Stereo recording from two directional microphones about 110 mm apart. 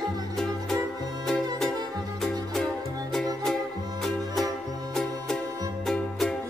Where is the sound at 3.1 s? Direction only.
5° left (ahead or behind).